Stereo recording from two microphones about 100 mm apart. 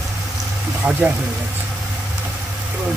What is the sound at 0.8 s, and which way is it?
Speech, 15° right (ahead or behind).